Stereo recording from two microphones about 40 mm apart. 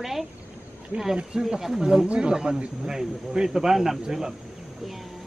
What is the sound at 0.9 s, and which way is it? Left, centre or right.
Speech, right.